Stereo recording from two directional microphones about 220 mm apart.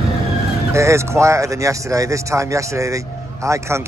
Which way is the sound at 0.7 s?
15° right (ahead or behind).